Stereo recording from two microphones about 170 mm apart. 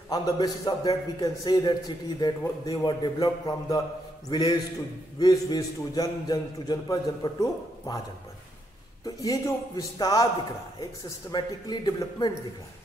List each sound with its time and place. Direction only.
0.1 s a man's voice: 25° left (ahead or behind)
9.0 s a man's voice: 20° left (ahead or behind)
11.3 s a man's voice: 25° left (ahead or behind)